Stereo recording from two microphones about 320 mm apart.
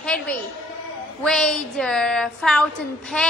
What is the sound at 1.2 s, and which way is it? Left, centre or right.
A woman's voice, centre.